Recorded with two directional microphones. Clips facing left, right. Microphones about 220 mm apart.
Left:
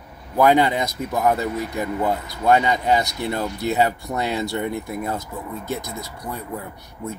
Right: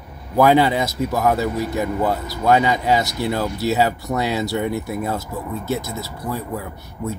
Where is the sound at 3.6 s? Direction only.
5° right (ahead or behind).